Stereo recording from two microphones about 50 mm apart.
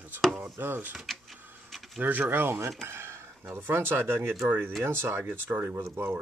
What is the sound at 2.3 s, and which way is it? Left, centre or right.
Speech, right.